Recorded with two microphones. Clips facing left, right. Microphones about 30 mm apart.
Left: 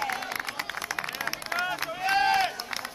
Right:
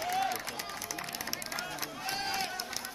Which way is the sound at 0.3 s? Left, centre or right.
Left.